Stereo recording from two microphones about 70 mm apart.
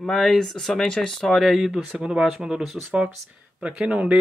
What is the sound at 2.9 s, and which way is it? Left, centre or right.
Speech, centre.